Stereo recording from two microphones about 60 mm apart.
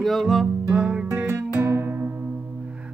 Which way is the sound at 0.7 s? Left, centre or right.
Centre.